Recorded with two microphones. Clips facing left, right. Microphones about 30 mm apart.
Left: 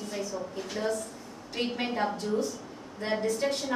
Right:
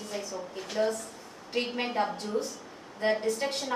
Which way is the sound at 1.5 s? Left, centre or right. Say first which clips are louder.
Right 1 dB; centre.